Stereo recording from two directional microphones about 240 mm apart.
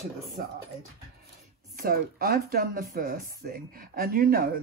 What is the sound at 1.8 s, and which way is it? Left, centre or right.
Speech, right.